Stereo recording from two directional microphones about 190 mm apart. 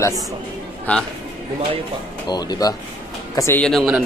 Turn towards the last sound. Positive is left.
turn(degrees=0)  # may be behind; listen again after turning